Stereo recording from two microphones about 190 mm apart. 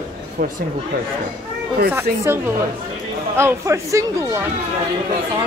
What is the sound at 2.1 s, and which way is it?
Speech, 50° right (ahead or behind).